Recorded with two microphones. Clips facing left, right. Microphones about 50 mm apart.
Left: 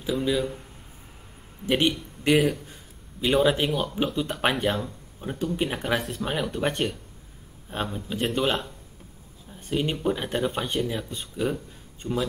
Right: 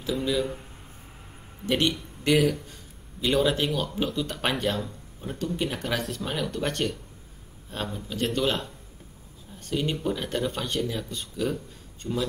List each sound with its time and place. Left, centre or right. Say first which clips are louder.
0.1 s speech: left 1 dB; centre
1.7 s speech: left 2 dB; centre
4.6 s speech: left 2 dB; centre
9.6 s speech: left 1 dB; centre